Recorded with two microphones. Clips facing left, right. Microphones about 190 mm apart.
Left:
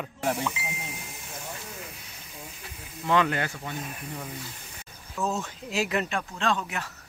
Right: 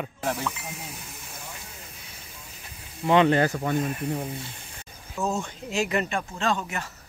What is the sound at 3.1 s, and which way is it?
Speech, 25° right (ahead or behind).